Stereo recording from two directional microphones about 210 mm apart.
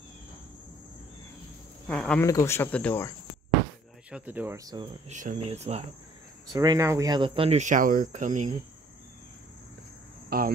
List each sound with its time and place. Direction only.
1.9 s speech: 5° left (ahead or behind)
4.1 s speech: 10° right (ahead or behind)
5.0 s speech: 35° right (ahead or behind)
6.5 s speech: 15° right (ahead or behind); by 8.5 s 35° right (ahead or behind)
10.3 s speech: 45° right (ahead or behind)